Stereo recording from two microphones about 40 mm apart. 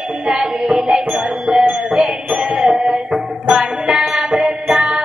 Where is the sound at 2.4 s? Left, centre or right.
Right.